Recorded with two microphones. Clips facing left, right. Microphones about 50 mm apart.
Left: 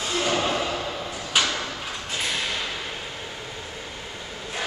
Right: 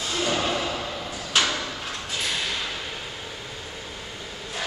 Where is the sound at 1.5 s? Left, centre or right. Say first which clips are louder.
Even; centre.